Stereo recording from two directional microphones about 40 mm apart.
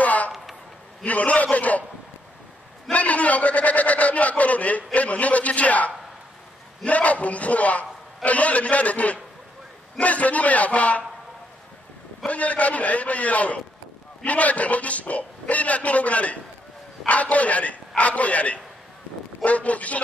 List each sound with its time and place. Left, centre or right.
0.0 s a sound: left
1.0 s a man's voice: left
2.9 s a man's voice: left
12.3 s a man's voice: left